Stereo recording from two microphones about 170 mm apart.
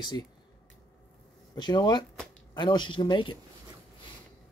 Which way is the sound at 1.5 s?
25° left (ahead or behind).